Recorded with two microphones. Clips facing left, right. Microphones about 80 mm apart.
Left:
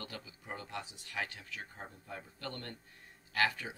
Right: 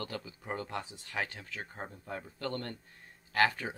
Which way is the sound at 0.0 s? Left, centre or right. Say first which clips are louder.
Right 6 dB; right.